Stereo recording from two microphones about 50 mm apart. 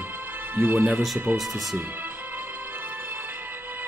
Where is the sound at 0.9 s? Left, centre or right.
Centre.